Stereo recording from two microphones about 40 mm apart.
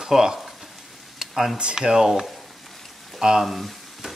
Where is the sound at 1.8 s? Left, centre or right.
Centre.